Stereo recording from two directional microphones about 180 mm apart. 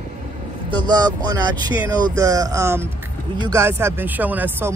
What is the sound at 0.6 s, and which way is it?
Speech, 25° right (ahead or behind).